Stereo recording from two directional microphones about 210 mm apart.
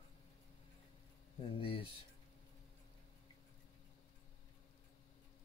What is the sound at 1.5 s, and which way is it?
Speech, 25° left (ahead or behind).